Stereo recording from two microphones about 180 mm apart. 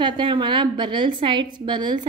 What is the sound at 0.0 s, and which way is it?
A woman's voice, 25° right (ahead or behind).